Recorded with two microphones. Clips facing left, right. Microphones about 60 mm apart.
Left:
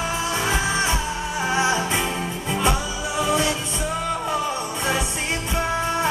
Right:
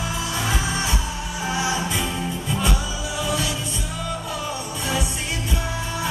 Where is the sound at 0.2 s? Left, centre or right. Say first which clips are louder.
Left 2 dB; left.